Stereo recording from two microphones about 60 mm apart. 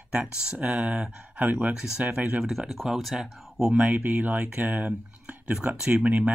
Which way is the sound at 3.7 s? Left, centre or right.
Right.